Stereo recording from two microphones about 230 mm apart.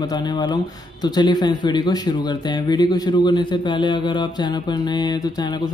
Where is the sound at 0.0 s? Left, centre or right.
Centre.